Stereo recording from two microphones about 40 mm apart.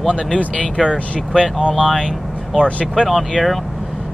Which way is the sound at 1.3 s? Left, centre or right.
Centre.